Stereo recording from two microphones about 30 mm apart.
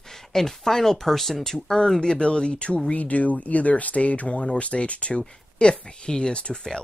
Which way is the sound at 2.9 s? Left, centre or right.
Left.